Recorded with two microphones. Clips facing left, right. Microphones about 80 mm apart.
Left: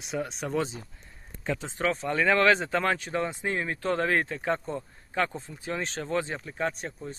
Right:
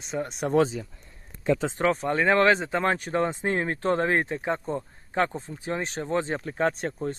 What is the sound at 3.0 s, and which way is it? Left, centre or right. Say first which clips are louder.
Speech: right 4 dB; right.